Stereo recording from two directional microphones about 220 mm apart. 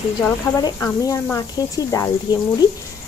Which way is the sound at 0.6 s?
15° left (ahead or behind).